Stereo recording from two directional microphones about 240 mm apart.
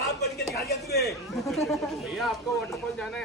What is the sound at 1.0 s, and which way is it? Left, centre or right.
Speech, centre.